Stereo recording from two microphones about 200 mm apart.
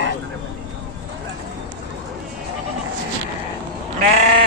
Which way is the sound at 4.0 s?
40° right (ahead or behind).